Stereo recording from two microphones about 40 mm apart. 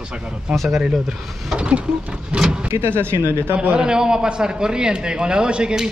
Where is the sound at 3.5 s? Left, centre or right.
Right.